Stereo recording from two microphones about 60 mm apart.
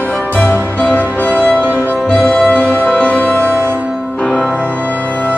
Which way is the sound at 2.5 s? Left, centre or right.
Left.